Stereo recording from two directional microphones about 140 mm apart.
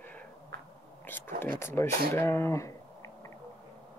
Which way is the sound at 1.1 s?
15° left (ahead or behind).